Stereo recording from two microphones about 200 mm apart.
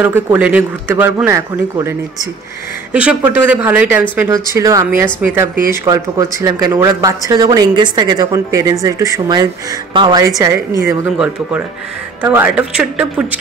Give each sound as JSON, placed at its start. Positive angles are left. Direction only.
{"t": 0.0, "sound": "a man's voice", "side_deg": -10}